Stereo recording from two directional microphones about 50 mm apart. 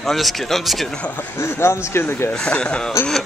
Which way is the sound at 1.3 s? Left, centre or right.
Left.